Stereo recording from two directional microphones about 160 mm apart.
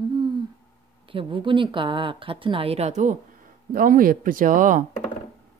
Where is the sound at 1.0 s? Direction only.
30° right (ahead or behind); by 3.2 s 50° right (ahead or behind).